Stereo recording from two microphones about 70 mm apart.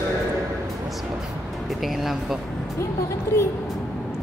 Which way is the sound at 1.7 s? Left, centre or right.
Centre.